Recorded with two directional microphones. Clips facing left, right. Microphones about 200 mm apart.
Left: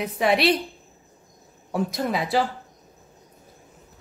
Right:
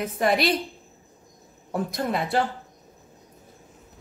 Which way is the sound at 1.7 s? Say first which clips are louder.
Left 1 dB; centre (ahead or behind).